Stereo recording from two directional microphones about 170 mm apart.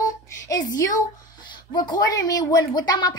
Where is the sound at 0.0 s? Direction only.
20° left (ahead or behind).